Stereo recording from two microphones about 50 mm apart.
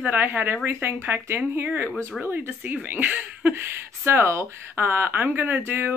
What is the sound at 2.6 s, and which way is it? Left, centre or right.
Speech, right.